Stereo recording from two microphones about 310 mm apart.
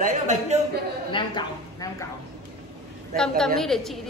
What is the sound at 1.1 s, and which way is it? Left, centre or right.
Speech, centre.